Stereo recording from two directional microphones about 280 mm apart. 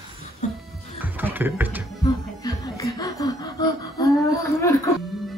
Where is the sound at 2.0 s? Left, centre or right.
Centre.